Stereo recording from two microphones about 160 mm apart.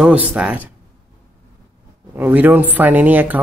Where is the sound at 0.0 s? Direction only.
10° right (ahead or behind).